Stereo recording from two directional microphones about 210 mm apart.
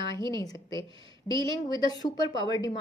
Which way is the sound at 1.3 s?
20° left (ahead or behind).